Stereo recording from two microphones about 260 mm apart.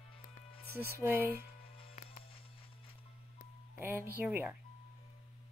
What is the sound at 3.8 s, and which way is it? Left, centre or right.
Speech, centre.